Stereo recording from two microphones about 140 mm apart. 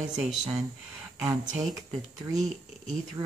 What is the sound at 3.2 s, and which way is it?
Speech, 35° right (ahead or behind).